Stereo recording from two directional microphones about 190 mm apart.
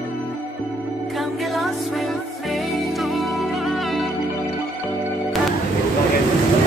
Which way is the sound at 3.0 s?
Centre (ahead or behind).